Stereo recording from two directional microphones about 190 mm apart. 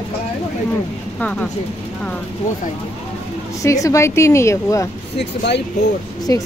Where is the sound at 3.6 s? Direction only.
15° left (ahead or behind).